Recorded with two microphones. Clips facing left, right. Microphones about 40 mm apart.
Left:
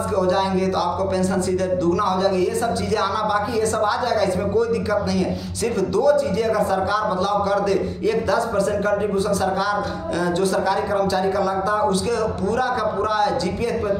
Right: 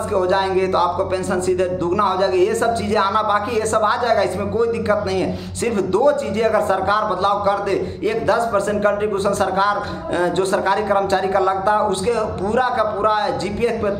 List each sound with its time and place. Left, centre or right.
0.1 s a man's voice: right